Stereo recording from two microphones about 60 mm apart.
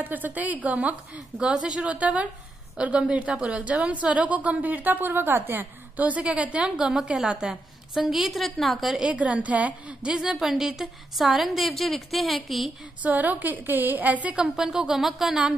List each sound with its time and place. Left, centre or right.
0.0 s a woman's voice: right
1.4 s speech: centre
1.9 s a woman's voice: right
5.9 s a woman's voice: right
7.9 s a woman's voice: centre
9.1 s a woman's voice: right
10.4 s a woman's voice: centre
13.0 s a woman's voice: right
14.4 s speech: centre